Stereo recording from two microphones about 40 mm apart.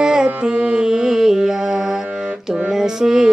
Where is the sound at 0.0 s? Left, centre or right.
Right.